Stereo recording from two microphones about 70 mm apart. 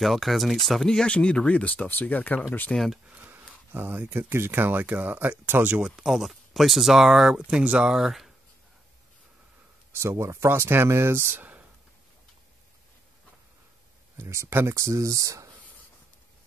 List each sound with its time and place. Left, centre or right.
0.0 s speech: centre; by 2.4 s left
2.7 s speech: centre
3.2 s speech: right
5.8 s speech: centre
6.0 s speech: centre
7.4 s speech: centre
7.9 s speech: centre
9.9 s speech: right
14.1 s speech: right